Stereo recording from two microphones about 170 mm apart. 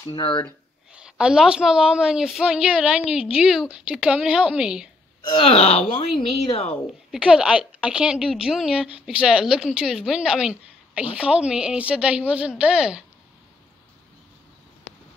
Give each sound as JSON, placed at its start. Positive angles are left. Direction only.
{"t": 0.1, "sound": "speech", "side_deg": 30}
{"t": 0.9, "sound": "a woman's voice", "side_deg": -5}
{"t": 5.3, "sound": "a woman's voice", "side_deg": 35}
{"t": 7.1, "sound": "a woman's voice", "side_deg": -5}